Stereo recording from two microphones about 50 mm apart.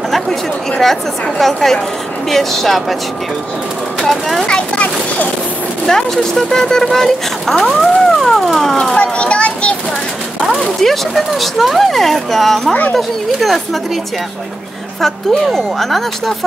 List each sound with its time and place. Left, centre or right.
0.1 s speech: centre
4.0 s speech: centre
4.7 s a sound: left
5.9 s speech: centre
8.9 s children playing: left
10.8 s speech: centre
15.0 s speech: centre